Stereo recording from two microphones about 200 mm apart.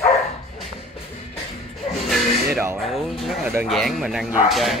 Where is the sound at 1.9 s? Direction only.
Centre (ahead or behind).